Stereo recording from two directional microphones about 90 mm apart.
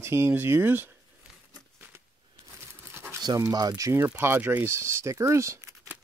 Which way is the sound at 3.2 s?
45° right (ahead or behind).